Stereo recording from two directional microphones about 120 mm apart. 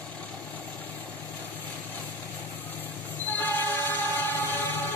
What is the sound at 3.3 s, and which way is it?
Train, 15° left (ahead or behind).